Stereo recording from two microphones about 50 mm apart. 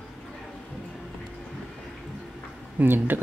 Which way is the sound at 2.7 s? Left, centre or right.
Right.